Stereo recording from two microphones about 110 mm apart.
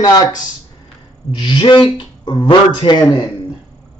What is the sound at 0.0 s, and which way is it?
Speech, 35° left (ahead or behind).